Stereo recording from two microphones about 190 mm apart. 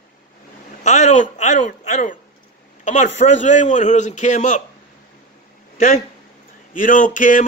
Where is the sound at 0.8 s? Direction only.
40° left (ahead or behind).